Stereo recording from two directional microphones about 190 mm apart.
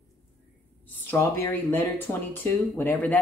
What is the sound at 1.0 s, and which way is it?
Speech, 10° left (ahead or behind).